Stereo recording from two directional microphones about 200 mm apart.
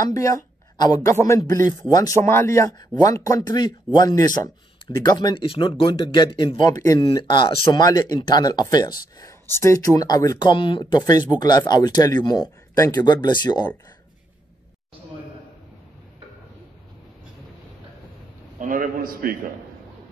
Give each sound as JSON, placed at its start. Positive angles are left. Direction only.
{"t": 0.1, "sound": "speech", "side_deg": 15}
{"t": 18.6, "sound": "a man's voice", "side_deg": -45}